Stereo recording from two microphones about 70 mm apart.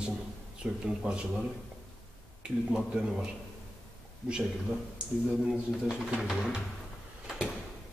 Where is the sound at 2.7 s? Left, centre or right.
Centre.